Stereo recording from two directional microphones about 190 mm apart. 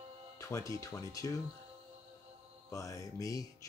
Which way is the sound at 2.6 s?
15° left (ahead or behind).